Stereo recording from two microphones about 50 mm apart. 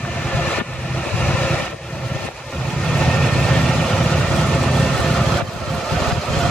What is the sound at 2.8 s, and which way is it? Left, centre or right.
Vehicle, centre.